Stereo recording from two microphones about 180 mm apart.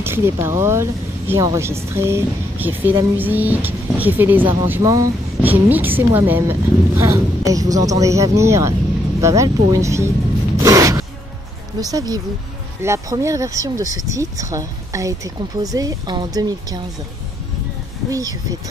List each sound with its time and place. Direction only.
0.0 s speech: 15° right (ahead or behind)
9.2 s zipper: 15° right (ahead or behind)
11.8 s a woman's voice: 20° right (ahead or behind)